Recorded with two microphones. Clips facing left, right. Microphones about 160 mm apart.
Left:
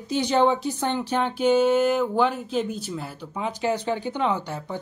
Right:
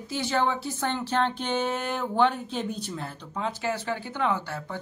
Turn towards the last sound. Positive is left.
turn(degrees=20)  # may be behind; listen again after turning